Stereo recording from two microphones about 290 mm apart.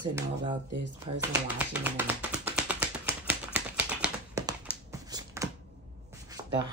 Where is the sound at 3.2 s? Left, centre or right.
Centre.